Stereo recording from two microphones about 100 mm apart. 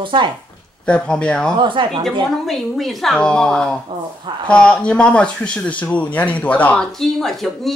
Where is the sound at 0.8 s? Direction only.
10° left (ahead or behind).